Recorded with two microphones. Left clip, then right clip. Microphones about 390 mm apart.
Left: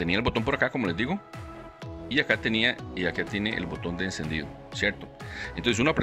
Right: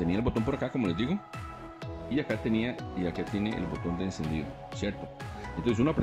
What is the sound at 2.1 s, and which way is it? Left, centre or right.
Speech, left.